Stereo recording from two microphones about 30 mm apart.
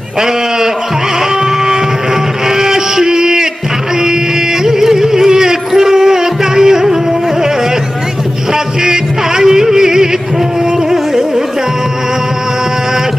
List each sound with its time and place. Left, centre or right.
2.5 s music: centre
4.6 s a sound: centre
5.7 s music: centre
8.8 s music: centre